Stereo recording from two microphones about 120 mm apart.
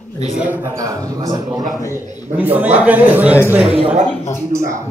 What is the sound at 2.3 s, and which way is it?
A man's voice, 15° right (ahead or behind).